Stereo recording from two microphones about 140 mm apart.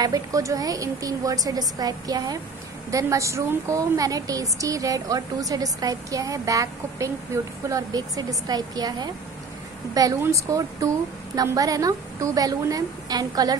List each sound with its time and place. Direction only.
0.0 s a woman's voice: 25° right (ahead or behind)